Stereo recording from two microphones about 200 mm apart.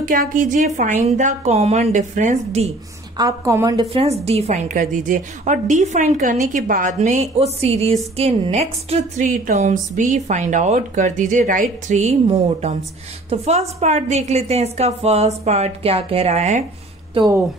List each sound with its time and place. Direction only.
0.0 s a woman's voice: 40° right (ahead or behind)
3.2 s a woman's voice: 15° right (ahead or behind); by 16.6 s 35° right (ahead or behind)
17.1 s speech: 20° right (ahead or behind)